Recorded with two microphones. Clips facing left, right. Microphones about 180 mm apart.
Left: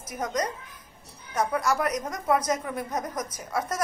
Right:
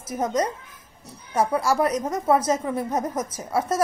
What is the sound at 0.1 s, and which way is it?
Speech, 25° right (ahead or behind).